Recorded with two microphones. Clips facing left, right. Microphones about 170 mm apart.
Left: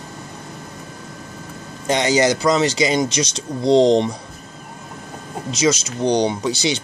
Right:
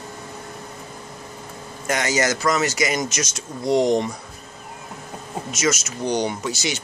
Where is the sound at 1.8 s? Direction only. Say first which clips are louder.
Left 5 dB; 30° left (ahead or behind).